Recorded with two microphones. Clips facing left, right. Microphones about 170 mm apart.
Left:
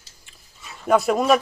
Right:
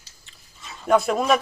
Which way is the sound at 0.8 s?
5° left (ahead or behind).